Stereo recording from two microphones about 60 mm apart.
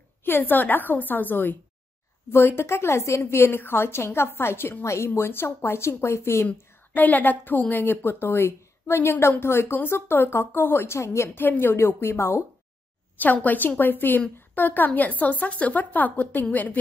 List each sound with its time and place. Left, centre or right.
0.2 s a woman's voice: left
2.3 s a woman's voice: left
6.4 s a woman's voice: left
11.4 s a woman's voice: left
13.2 s a woman's voice: left